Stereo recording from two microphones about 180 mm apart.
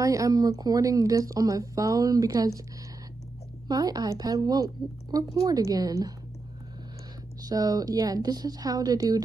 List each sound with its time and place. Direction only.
0.0 s speech: 20° right (ahead or behind)
3.6 s speech: 20° right (ahead or behind)
7.4 s speech: 20° right (ahead or behind)